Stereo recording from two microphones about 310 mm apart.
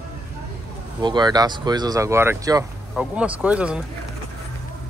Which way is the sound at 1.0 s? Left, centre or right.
Centre.